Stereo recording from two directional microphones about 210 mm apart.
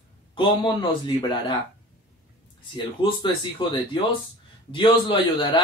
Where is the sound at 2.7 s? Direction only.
25° left (ahead or behind).